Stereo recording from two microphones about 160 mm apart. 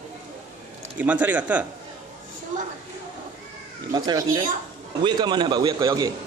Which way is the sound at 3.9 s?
25° right (ahead or behind).